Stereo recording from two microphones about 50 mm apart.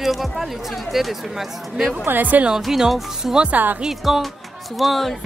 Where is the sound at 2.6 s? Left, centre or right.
Centre.